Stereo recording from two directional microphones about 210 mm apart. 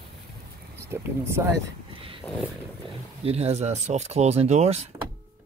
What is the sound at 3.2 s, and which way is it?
Speech, 30° right (ahead or behind).